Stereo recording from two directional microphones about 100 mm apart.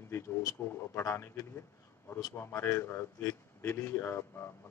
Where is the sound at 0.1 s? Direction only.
30° left (ahead or behind).